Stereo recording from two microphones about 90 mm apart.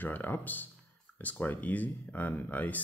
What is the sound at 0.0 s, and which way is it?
Speech, 20° left (ahead or behind).